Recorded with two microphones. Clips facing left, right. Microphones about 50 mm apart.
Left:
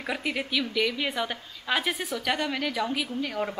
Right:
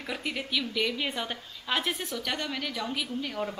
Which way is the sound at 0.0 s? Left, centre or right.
Centre.